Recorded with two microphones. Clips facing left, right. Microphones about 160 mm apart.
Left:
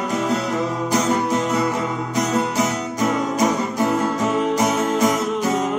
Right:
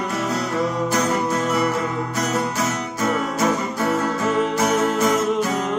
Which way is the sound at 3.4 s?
20° left (ahead or behind).